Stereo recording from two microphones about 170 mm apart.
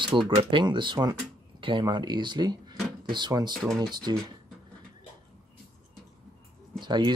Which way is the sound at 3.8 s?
25° right (ahead or behind).